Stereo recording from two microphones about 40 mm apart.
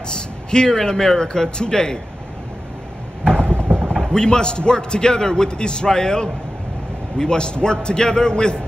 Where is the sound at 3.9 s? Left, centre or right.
Centre.